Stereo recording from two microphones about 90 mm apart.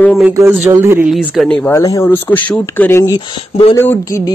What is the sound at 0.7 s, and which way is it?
Speech, 30° right (ahead or behind).